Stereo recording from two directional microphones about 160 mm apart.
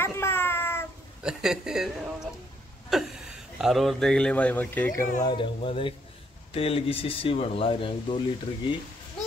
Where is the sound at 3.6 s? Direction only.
Centre (ahead or behind).